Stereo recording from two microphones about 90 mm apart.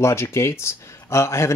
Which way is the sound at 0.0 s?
30° left (ahead or behind).